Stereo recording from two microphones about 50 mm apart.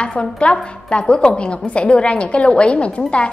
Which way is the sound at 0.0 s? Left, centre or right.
Left.